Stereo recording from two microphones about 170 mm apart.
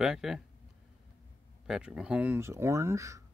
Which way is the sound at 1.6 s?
5° right (ahead or behind).